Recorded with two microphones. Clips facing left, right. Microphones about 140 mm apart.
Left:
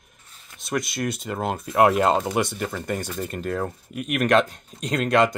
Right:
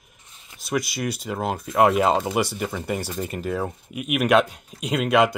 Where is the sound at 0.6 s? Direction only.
Centre (ahead or behind).